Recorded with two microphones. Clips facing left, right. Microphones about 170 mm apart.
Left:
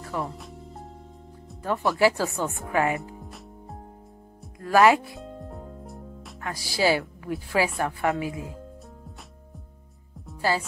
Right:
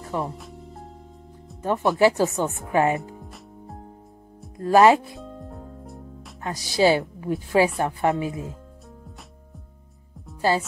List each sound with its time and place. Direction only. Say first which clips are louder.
0.0 s music: right 3 dB; 20° right (ahead or behind)
0.4 s music: right 1 dB; centre (ahead or behind)
1.6 s a woman's voice: right 3 dB; 20° right (ahead or behind)
3.2 s music: right 1 dB; centre (ahead or behind)
4.6 s a woman's voice: right 3 dB; 25° right (ahead or behind)
5.2 s music: even; centre (ahead or behind)
6.4 s a woman's voice: right 4 dB; 20° right (ahead or behind)